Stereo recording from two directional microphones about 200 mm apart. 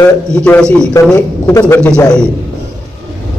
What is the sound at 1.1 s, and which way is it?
Speech, 15° left (ahead or behind).